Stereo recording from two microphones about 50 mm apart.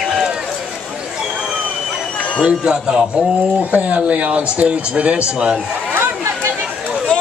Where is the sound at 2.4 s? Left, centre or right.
Centre.